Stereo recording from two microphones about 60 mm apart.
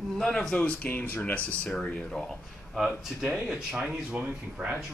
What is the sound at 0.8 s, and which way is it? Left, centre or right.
Speech, left.